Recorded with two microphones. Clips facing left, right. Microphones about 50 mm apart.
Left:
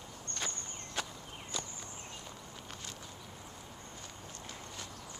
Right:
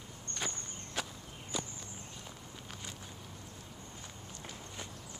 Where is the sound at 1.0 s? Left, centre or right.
Centre.